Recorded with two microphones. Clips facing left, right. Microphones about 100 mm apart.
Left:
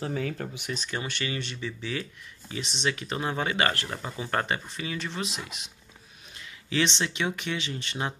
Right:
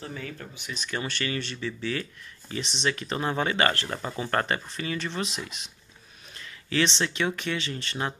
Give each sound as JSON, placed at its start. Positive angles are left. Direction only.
{"t": 0.0, "sound": "speech", "side_deg": 60}
{"t": 0.8, "sound": "speech", "side_deg": 20}